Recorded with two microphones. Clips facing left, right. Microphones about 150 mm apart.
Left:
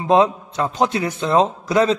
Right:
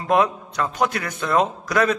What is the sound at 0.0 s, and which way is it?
A man's voice, 25° left (ahead or behind).